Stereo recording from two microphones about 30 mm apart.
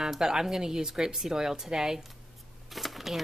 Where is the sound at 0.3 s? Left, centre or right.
Centre.